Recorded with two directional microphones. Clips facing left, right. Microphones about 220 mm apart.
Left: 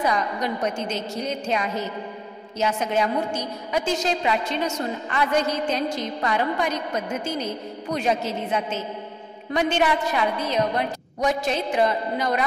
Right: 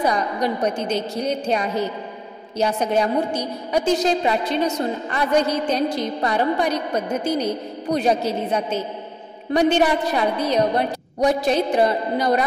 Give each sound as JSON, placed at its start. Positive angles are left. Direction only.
{"t": 0.0, "sound": "a woman's voice", "side_deg": -35}